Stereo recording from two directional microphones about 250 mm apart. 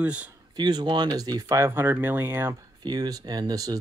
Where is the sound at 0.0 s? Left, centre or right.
Centre.